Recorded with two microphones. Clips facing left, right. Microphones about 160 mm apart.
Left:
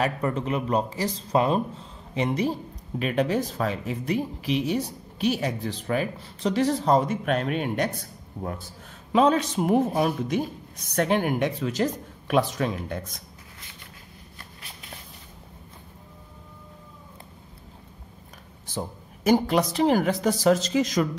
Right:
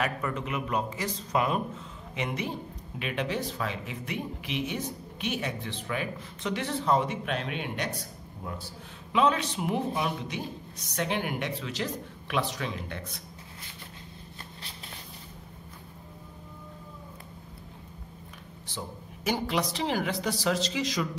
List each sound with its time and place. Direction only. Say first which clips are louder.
0.0 s a woman's voice: left 5 dB; 35° left (ahead or behind); by 8.6 s 55° left (ahead or behind)
9.1 s a woman's voice: left 5 dB; 40° left (ahead or behind)
18.7 s a woman's voice: left 7 dB; 45° left (ahead or behind)